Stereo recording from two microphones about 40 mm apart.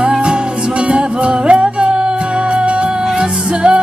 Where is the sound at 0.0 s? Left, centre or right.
Right.